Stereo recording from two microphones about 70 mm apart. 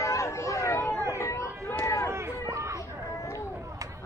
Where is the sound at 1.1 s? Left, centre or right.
Left.